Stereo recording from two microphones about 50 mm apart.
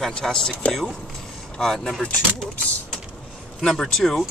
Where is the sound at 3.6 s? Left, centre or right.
Centre.